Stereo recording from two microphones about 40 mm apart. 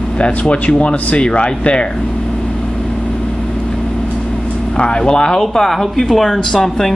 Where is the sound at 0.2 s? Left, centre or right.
Left.